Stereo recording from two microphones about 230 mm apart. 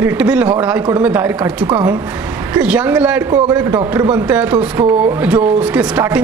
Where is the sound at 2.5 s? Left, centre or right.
Centre.